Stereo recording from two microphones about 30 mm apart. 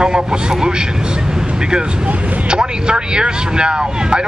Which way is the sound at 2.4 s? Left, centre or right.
Right.